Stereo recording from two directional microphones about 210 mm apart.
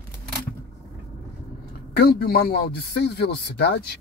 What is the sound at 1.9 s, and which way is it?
Speech, 50° left (ahead or behind).